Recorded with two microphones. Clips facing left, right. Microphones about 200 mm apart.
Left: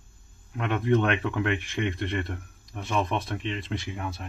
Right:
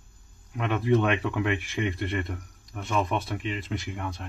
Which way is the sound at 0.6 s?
Centre (ahead or behind).